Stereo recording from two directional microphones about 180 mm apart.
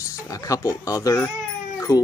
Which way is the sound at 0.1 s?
20° left (ahead or behind).